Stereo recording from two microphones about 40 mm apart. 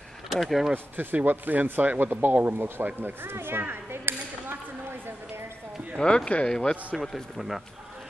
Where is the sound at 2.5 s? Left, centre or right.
Right.